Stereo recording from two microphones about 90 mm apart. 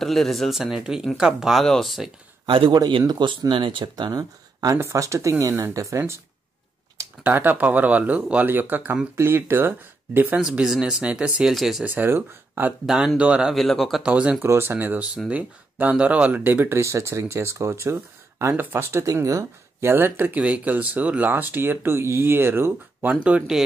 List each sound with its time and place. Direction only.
0.0 s speech: centre (ahead or behind)
2.4 s a man's voice: 80° right
3.1 s speech: 60° right (ahead or behind)
4.7 s speech: 35° right (ahead or behind)
7.2 s speech: 20° right (ahead or behind)
10.4 s speech: 10° right (ahead or behind)
11.8 s speech: 20° right (ahead or behind)
12.8 s speech: 5° right (ahead or behind)
14.0 s speech: 15° right (ahead or behind)
14.4 s speech: 25° right (ahead or behind)
19.9 s speech: 20° right (ahead or behind)
22.9 s speech: 15° right (ahead or behind)